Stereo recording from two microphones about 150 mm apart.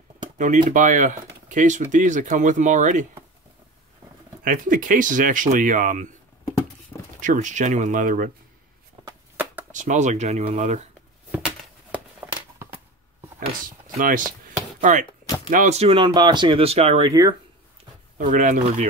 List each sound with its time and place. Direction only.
0.4 s speech: 55° right (ahead or behind)
4.5 s speech: 65° right (ahead or behind)
7.2 s speech: 60° right (ahead or behind)
9.7 s speech: 55° right (ahead or behind)
13.9 s speech: 65° right (ahead or behind); by 17.1 s 45° right (ahead or behind)
17.1 s speech: 25° right (ahead or behind)
18.1 s speech: 60° right (ahead or behind)